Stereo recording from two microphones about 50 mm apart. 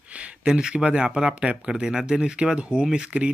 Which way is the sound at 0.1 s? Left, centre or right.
Right.